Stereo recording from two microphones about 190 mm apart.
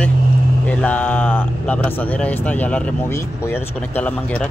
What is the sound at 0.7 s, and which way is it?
Speech, 5° left (ahead or behind).